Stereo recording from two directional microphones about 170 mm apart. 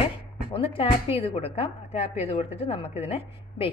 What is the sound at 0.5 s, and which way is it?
A woman's voice, 35° left (ahead or behind).